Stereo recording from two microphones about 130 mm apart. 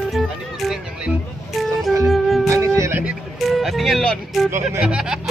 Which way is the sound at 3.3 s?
Centre (ahead or behind).